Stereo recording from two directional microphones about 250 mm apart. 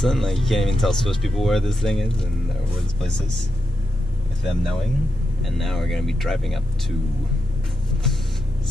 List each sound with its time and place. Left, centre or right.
0.0 s speech: centre
4.5 s speech: centre